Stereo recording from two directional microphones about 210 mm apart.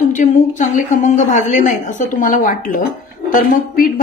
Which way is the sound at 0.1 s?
35° left (ahead or behind).